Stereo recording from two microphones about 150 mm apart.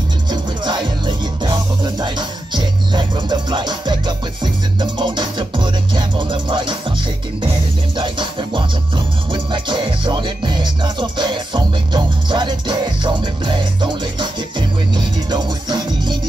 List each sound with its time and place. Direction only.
0.3 s music: 30° right (ahead or behind)
8.0 s music: 35° right (ahead or behind)